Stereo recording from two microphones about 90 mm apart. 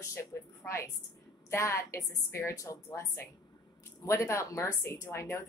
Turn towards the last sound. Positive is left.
turn(degrees=30)  # may be behind; listen again after turning